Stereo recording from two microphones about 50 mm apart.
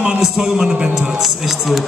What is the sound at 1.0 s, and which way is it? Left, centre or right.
Speech, centre.